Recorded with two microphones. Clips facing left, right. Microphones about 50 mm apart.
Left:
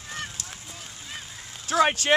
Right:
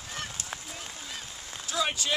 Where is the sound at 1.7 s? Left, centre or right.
Left.